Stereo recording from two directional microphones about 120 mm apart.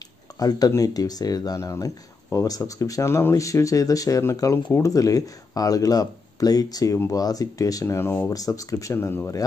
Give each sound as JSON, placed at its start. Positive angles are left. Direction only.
{"t": 0.4, "sound": "speech", "side_deg": 30}
{"t": 8.3, "sound": "speech", "side_deg": 30}